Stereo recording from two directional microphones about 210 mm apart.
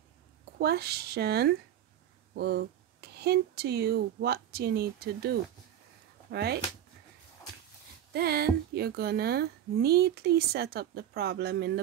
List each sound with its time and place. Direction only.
0.6 s a woman's voice: 50° right (ahead or behind)
6.3 s a woman's voice: 50° right (ahead or behind)
8.1 s a woman's voice: 50° right (ahead or behind)